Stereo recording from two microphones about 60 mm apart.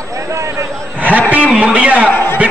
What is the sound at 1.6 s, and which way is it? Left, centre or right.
Speech, right.